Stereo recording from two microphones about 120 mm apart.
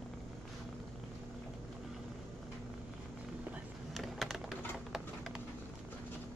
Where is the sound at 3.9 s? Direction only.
Centre (ahead or behind).